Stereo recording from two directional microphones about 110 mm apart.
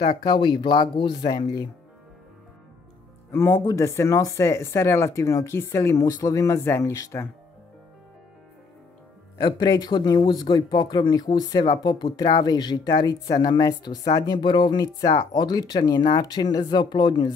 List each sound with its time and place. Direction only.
0.1 s speech: 40° left (ahead or behind)
3.3 s speech: 25° left (ahead or behind)
9.4 s speech: 40° left (ahead or behind)